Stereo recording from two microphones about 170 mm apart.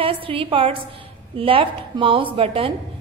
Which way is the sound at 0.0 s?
30° right (ahead or behind).